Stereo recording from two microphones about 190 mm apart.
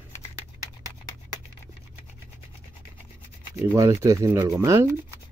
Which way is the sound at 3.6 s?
15° right (ahead or behind).